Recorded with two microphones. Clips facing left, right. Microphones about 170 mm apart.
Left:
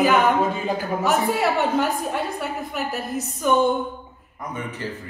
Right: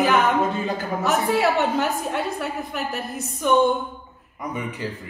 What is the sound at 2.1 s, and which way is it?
A woman's voice, centre (ahead or behind).